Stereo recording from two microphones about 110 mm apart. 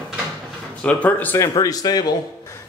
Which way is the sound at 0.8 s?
10° left (ahead or behind).